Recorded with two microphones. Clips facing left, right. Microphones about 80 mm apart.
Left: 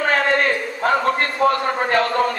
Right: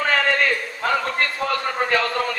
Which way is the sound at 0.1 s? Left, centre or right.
Left.